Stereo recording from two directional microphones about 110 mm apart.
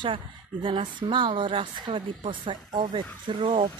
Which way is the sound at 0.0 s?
50° right (ahead or behind).